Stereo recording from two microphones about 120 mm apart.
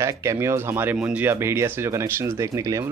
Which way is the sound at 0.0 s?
25° right (ahead or behind).